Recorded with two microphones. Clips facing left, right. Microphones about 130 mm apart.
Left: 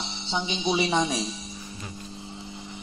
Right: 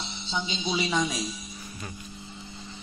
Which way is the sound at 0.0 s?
25° left (ahead or behind).